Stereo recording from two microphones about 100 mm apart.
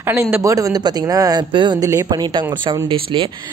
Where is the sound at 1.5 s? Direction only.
50° right (ahead or behind).